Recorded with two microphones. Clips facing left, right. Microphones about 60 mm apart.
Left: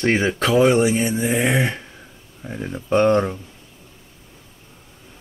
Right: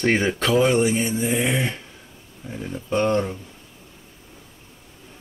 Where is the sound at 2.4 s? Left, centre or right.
Left.